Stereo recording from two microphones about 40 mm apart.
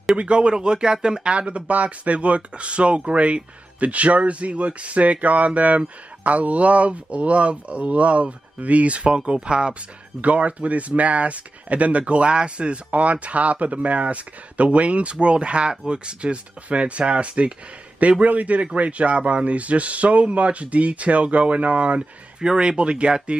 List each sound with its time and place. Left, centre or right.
0.1 s speech: right
10.2 s speech: right